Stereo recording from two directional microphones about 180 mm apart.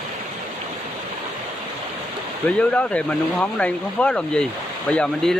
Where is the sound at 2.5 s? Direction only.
5° left (ahead or behind).